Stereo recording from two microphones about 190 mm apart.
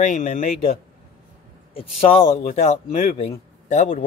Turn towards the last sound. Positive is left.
turn(degrees=35)  # may be behind; listen again after turning